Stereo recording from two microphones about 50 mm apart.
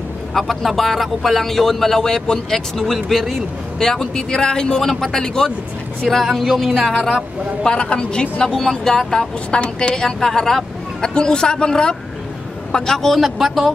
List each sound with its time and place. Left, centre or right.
0.3 s a man's voice: centre
6.0 s a man's voice: centre
7.6 s a woman's voice: centre
8.5 s a man's voice: centre
9.5 s a woman's voice: left
9.9 s a man's voice: centre